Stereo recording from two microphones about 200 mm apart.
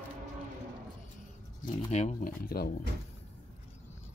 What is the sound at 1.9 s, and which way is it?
Speech, 35° left (ahead or behind).